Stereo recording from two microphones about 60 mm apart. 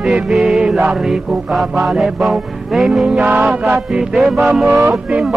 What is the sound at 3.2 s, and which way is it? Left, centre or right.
Music, right.